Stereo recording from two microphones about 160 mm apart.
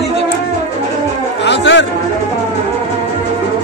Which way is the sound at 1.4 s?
90° left.